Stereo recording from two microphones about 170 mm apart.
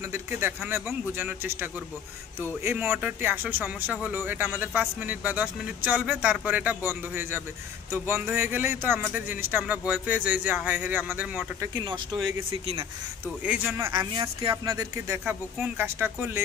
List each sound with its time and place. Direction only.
0.1 s speech: 15° right (ahead or behind)
0.6 s speech: 5° right (ahead or behind)
11.8 s a woman's voice: 25° right (ahead or behind)
13.4 s speech: 5° right (ahead or behind)
13.9 s a woman's voice: 30° right (ahead or behind); by 16.4 s 15° right (ahead or behind)